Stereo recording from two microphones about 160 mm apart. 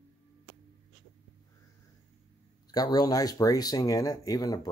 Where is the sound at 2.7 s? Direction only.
25° left (ahead or behind).